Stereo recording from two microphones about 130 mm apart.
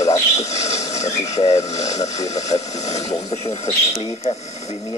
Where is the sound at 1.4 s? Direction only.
60° left (ahead or behind).